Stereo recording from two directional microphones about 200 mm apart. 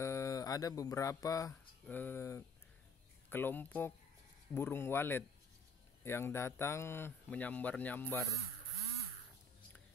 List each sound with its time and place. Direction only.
0.0 s speech: 15° left (ahead or behind)